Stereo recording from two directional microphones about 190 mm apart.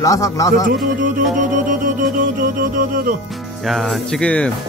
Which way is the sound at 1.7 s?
45° right (ahead or behind).